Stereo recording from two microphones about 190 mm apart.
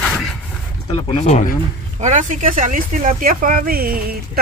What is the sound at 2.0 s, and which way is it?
Speech, 40° right (ahead or behind).